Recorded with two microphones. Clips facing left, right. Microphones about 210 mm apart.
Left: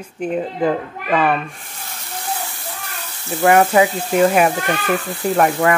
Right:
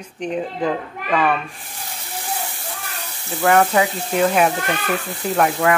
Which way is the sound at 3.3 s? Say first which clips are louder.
Left 3 dB; 15° left (ahead or behind).